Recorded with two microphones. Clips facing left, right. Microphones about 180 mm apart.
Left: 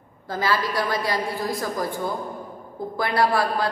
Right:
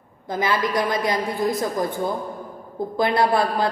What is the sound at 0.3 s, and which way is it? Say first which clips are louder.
A man's voice: right 2 dB; 20° right (ahead or behind).